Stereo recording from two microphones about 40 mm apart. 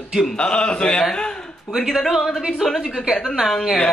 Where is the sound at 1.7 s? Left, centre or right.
Centre.